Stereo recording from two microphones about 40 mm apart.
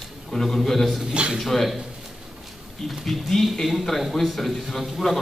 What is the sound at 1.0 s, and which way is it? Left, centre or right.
Speech, right.